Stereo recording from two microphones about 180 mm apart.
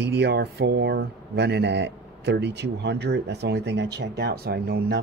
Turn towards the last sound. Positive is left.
turn(degrees=-65)  # may be behind; listen again after turning